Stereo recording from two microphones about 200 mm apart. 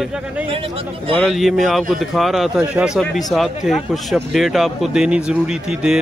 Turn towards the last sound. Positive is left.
turn(degrees=-5)  # may be behind; listen again after turning